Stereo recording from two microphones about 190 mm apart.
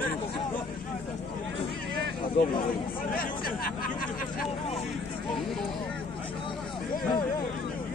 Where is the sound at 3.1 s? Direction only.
50° left (ahead or behind).